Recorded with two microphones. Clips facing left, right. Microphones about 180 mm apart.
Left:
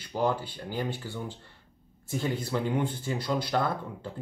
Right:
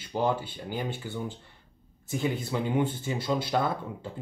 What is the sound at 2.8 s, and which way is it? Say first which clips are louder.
Speech: right 2 dB; 25° right (ahead or behind).